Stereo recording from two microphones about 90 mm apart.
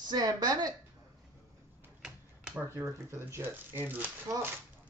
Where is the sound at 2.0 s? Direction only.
10° right (ahead or behind).